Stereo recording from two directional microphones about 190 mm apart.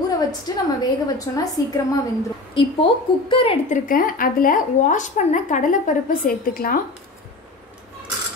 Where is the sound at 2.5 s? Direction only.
25° left (ahead or behind).